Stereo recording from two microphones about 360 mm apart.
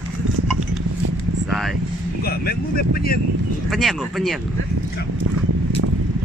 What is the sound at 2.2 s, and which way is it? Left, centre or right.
Speech, left.